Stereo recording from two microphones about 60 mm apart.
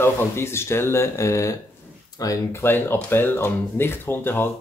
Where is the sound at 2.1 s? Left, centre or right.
Left.